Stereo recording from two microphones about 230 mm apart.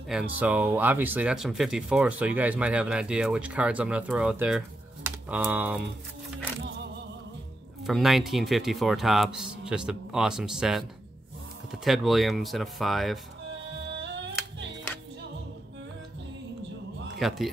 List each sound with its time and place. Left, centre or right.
0.1 s speech: centre
7.8 s speech: centre
13.6 s music: right
17.2 s speech: centre